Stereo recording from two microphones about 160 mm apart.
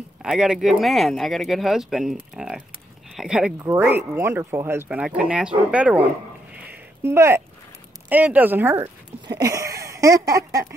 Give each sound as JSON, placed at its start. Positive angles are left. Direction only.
{"t": 0.2, "sound": "speech", "side_deg": -5}
{"t": 3.6, "sound": "speech", "side_deg": -15}
{"t": 9.3, "sound": "a sound", "side_deg": -20}